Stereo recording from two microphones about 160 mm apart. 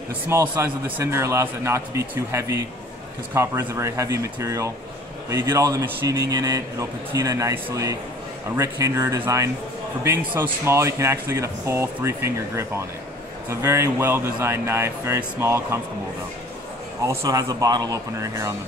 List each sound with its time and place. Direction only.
0.3 s a man's voice: 15° right (ahead or behind)
17.0 s a man's voice: 20° right (ahead or behind)